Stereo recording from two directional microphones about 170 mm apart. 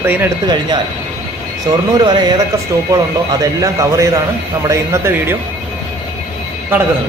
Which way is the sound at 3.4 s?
20° right (ahead or behind).